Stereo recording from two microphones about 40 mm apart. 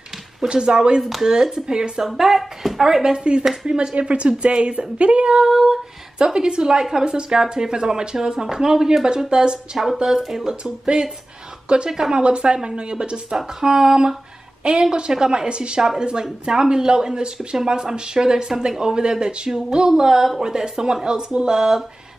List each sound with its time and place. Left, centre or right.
0.4 s a woman's voice: right
1.0 s speech: centre
2.0 s speech: centre
2.8 s a woman's voice: centre
5.5 s speech: centre
6.1 s a woman's voice: right
10.5 s a woman's voice: right
19.9 s speech: centre